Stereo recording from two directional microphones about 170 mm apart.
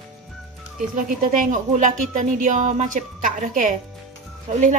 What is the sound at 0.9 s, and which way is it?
Speech, 50° right (ahead or behind).